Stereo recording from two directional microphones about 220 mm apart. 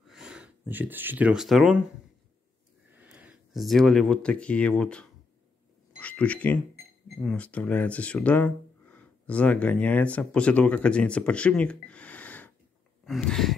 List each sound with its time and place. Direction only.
0.0 s speech: 5° right (ahead or behind)
2.9 s speech: 5° right (ahead or behind)
13.0 s a sound: centre (ahead or behind)